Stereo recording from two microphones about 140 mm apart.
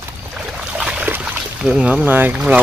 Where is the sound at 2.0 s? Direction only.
15° right (ahead or behind).